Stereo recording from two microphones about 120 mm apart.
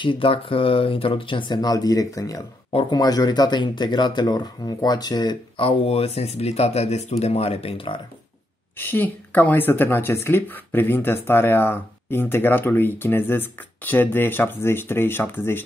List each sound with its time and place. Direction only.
0.0 s speech: 45° left (ahead or behind); by 2.4 s 30° left (ahead or behind)
2.7 s speech: 40° left (ahead or behind)
5.6 s speech: 55° left (ahead or behind)
8.7 s speech: 15° left (ahead or behind)